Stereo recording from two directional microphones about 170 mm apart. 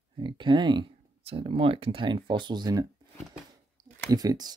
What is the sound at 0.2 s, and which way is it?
Speech, 30° right (ahead or behind).